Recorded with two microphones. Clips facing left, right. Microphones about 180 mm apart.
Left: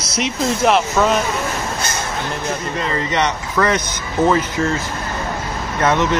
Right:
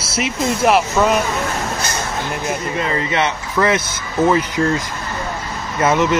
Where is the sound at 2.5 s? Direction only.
5° right (ahead or behind).